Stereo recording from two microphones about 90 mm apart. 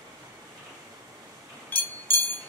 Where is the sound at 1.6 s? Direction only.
25° left (ahead or behind).